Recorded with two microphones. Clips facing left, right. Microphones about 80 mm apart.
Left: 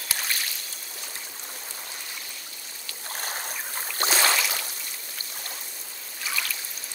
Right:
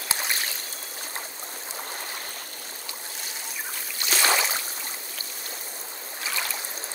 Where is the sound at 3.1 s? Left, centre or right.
Left.